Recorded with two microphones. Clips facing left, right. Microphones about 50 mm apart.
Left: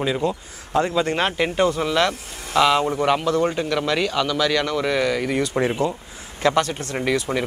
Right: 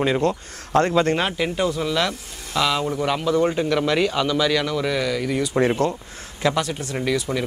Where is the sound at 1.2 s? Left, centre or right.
Left.